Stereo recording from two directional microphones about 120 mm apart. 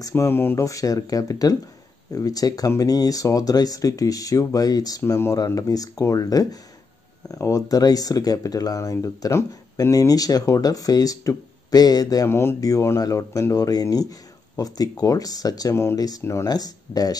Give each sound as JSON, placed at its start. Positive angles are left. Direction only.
{"t": 0.0, "sound": "speech", "side_deg": 20}